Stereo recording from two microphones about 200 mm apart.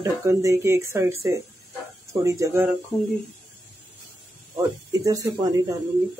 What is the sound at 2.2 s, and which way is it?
Speech, 15° right (ahead or behind).